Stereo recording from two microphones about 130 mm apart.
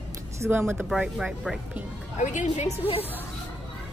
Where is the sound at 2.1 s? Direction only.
70° left (ahead or behind).